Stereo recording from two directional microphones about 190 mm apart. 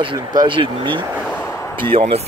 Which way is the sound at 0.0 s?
25° right (ahead or behind).